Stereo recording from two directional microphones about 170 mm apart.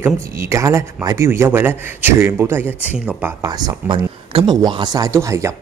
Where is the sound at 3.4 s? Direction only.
25° right (ahead or behind).